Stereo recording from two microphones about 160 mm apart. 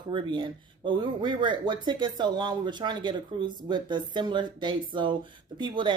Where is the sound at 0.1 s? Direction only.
30° right (ahead or behind).